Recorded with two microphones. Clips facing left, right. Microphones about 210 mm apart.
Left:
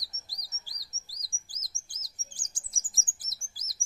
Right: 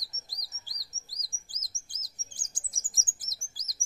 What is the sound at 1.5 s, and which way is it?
Chirp, 20° right (ahead or behind).